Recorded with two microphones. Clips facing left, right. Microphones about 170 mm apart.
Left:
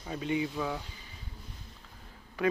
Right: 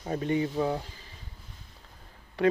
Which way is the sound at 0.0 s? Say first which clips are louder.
Right 4 dB; 45° right (ahead or behind).